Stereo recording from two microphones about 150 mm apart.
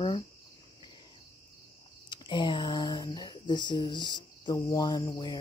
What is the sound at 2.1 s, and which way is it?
Speech, 30° left (ahead or behind).